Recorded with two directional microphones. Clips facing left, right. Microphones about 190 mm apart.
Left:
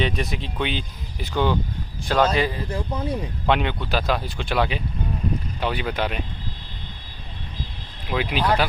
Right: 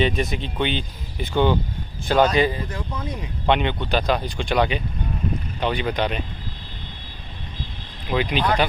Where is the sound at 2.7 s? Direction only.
30° left (ahead or behind).